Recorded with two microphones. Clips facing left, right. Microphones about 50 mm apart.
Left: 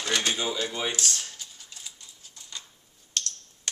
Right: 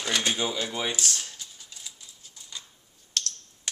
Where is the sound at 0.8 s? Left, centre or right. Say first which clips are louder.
Even; centre.